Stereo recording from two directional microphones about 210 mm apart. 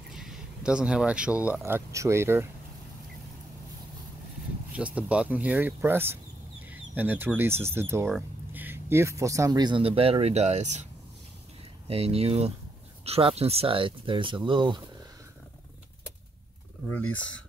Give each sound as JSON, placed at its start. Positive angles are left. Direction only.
{"t": 0.1, "sound": "speech", "side_deg": 0}
{"t": 4.7, "sound": "speech", "side_deg": -5}
{"t": 11.9, "sound": "speech", "side_deg": -30}